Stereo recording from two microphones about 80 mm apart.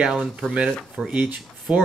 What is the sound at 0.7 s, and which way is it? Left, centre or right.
Speech, centre.